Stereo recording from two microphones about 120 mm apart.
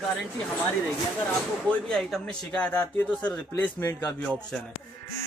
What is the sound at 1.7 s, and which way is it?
Speech, 5° left (ahead or behind).